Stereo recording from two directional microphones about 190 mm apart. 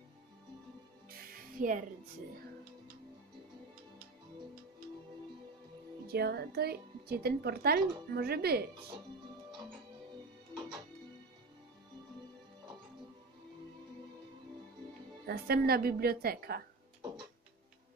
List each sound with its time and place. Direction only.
1.1 s music: 45° right (ahead or behind)
6.0 s speech: 55° right (ahead or behind)
15.2 s a woman's voice: 55° right (ahead or behind)